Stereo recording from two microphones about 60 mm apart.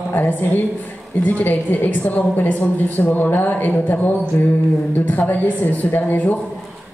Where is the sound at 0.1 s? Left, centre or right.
Left.